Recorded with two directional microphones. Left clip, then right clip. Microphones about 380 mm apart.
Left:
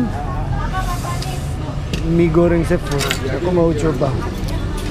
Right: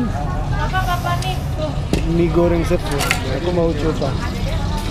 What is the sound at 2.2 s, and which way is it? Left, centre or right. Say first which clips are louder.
Speech: left 2 dB; left.